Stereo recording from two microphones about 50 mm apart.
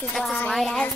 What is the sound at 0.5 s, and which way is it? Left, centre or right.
Speech, centre.